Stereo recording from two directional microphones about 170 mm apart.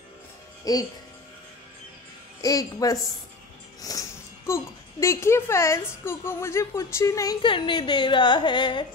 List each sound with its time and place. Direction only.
0.7 s speech: 20° left (ahead or behind)
2.4 s speech: 20° left (ahead or behind)